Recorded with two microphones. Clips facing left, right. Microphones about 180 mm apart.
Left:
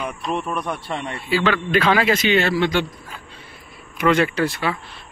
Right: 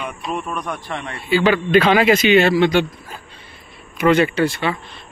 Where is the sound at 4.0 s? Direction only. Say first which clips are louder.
Right 3 dB; centre (ahead or behind).